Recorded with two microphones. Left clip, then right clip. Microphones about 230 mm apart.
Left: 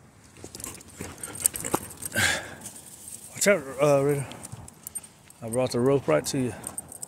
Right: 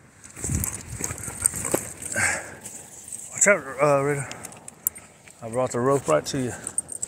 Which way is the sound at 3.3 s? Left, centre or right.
Left.